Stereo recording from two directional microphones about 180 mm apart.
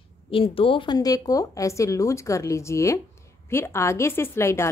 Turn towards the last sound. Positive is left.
turn(degrees=15)  # may be behind; listen again after turning